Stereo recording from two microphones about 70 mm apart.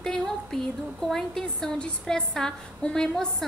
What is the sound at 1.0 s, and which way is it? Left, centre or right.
A woman's voice, centre.